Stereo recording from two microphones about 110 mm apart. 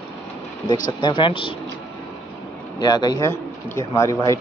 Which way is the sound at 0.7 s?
45° left (ahead or behind).